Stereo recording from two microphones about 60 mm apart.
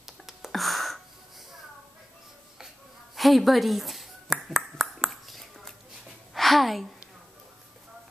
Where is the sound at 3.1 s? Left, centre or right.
Centre.